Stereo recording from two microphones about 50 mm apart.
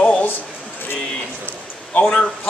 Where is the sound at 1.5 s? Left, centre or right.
Left.